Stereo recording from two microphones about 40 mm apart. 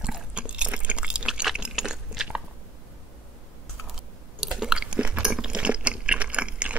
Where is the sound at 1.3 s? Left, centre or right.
Right.